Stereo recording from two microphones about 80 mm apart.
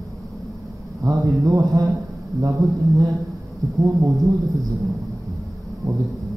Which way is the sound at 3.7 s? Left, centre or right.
Right.